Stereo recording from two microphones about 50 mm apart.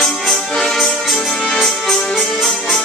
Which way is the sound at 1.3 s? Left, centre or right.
Centre.